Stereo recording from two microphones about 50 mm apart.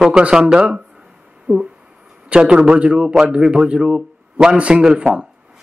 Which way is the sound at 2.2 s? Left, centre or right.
Centre.